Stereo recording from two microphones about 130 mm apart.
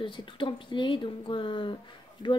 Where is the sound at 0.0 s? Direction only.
40° left (ahead or behind).